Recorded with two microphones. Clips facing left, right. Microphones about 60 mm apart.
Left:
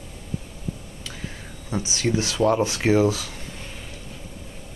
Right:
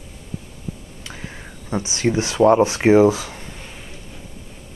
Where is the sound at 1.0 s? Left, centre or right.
Right.